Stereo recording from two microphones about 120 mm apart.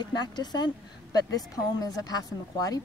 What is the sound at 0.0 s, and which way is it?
Speech, 35° left (ahead or behind).